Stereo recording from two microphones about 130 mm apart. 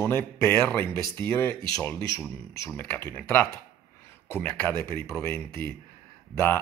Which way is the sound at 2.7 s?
10° left (ahead or behind).